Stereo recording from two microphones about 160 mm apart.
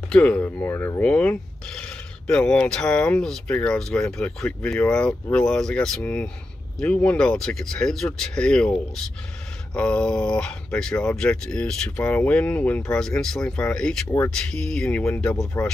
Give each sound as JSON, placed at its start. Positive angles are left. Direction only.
{"t": 0.1, "sound": "speech", "side_deg": 10}